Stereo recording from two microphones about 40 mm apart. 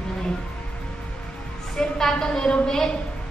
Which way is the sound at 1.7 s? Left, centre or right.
Centre.